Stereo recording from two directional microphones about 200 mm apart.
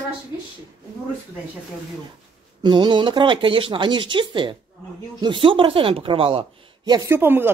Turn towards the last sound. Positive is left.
turn(degrees=-10)  # may be behind; listen again after turning